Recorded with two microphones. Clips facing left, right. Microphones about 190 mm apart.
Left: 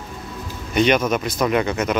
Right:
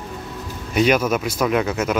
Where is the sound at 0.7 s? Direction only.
5° right (ahead or behind).